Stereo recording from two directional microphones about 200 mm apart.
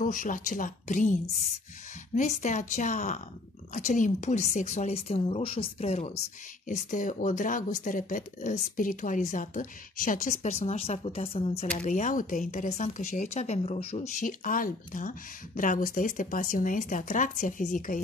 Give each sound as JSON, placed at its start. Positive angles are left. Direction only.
{"t": 0.0, "sound": "a woman's voice", "side_deg": 40}
{"t": 2.1, "sound": "a woman's voice", "side_deg": 35}
{"t": 11.8, "sound": "a woman's voice", "side_deg": 40}